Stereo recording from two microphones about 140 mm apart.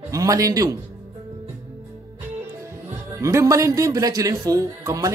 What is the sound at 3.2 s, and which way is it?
A man's voice, 20° right (ahead or behind).